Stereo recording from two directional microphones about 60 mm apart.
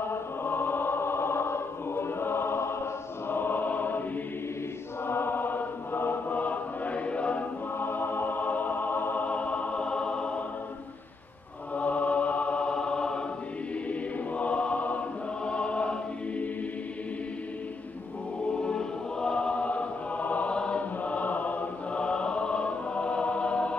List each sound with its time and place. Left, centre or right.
0.0 s choir: left
5.0 s chant: left
7.8 s music: left; by 10.4 s centre
11.7 s music: left
13.8 s choir: left
18.5 s choir: centre